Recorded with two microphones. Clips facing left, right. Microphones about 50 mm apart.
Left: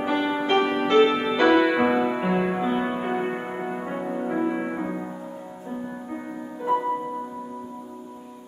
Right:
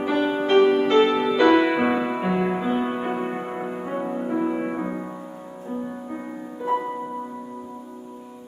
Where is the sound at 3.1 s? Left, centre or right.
Centre.